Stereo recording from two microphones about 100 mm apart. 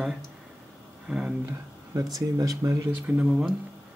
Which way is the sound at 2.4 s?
35° right (ahead or behind).